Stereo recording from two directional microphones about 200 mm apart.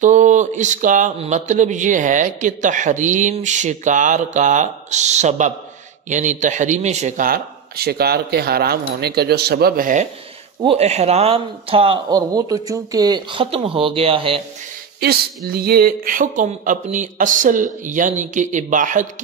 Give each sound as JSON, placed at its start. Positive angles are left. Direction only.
{"t": 0.0, "sound": "a man's voice", "side_deg": -40}
{"t": 10.6, "sound": "speech", "side_deg": -30}
{"t": 15.0, "sound": "speech", "side_deg": -50}